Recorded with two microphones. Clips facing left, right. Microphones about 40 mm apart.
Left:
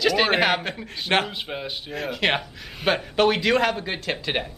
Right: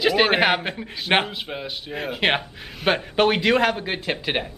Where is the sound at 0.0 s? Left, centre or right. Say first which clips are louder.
Right 2 dB; centre.